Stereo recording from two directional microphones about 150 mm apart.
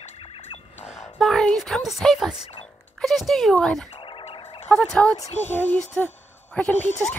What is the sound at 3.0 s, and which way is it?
Speech, centre (ahead or behind).